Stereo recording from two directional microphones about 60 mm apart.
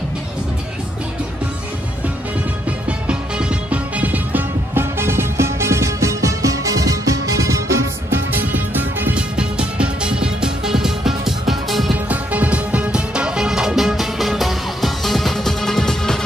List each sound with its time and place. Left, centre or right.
3.1 s music: centre; by 7.8 s right
8.1 s music: right
9.1 s music: centre
11.9 s music: right; by 16.2 s centre